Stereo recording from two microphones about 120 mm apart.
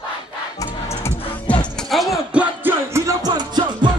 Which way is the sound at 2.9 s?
30° right (ahead or behind).